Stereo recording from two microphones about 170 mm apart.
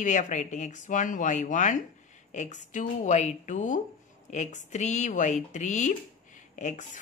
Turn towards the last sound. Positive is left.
turn(degrees=45)  # may be behind; listen again after turning